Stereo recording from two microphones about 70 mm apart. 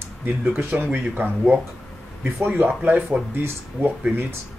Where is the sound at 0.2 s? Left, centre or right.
Right.